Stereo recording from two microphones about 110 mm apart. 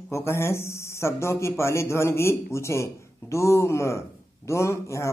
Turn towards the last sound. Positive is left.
turn(degrees=25)  # may be behind; listen again after turning